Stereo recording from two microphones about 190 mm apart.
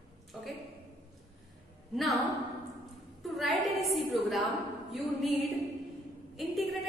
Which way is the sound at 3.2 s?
Centre (ahead or behind).